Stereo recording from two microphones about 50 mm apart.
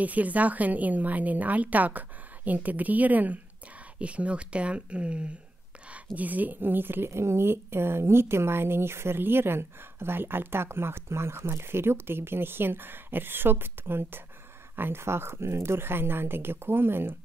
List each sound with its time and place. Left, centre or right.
0.0 s a woman's voice: right
6.1 s a woman's voice: right
7.1 s speech: right